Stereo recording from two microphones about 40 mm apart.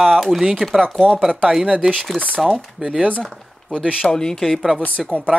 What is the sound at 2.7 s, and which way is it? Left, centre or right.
Speech, centre.